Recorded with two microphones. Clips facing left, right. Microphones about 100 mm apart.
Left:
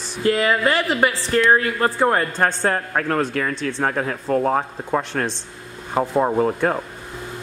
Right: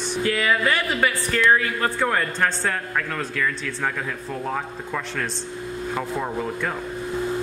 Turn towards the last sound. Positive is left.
turn(degrees=45)  # may be behind; listen again after turning